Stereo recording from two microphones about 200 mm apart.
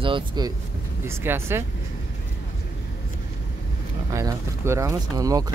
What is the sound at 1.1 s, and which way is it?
Speech, 10° right (ahead or behind).